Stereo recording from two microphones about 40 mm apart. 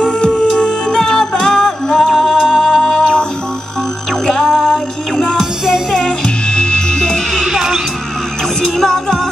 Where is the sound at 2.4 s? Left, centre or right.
Centre.